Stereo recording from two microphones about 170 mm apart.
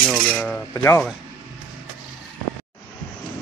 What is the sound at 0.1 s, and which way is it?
Cutlery, 5° left (ahead or behind).